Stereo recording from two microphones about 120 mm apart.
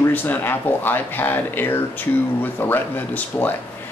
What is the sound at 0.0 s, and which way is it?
A man's voice, 15° left (ahead or behind).